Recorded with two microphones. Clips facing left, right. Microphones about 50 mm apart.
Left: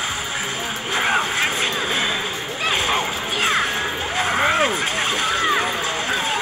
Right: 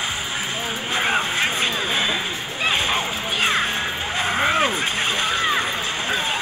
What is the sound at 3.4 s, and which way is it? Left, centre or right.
Music, right.